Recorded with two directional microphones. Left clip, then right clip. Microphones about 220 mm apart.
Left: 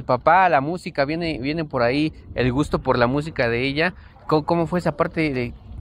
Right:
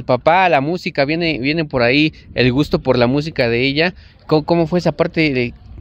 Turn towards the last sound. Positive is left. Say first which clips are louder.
# right 6 dB
turn(degrees=-40)  # may be behind; listen again after turning